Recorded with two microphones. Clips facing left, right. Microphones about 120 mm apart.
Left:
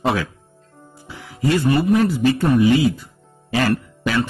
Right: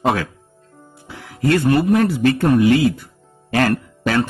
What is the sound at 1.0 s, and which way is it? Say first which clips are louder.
A man's voice: right 2 dB; 60° right (ahead or behind).